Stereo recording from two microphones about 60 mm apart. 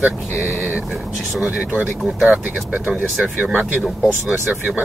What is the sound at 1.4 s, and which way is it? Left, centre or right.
Speech, right.